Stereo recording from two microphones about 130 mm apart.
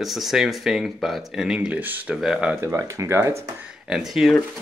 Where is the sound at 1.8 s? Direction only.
15° right (ahead or behind).